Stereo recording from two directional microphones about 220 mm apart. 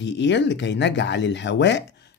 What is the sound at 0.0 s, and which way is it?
Speech, 55° left (ahead or behind).